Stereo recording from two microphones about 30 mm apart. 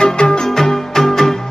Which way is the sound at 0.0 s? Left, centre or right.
Left.